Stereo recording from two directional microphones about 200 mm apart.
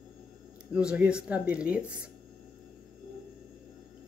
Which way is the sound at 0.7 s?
5° right (ahead or behind).